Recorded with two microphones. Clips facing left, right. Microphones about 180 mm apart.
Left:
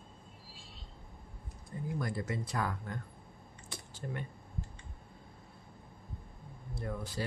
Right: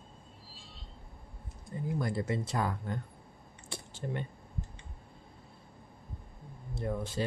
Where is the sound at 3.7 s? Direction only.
25° right (ahead or behind).